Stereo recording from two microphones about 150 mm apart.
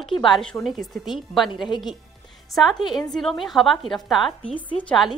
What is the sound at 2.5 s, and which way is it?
A woman's voice, centre (ahead or behind).